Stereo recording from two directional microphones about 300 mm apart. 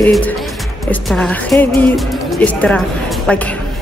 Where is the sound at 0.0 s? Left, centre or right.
Centre.